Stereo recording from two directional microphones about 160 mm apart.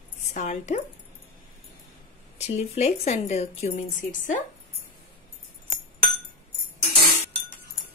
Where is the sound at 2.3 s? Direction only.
40° left (ahead or behind).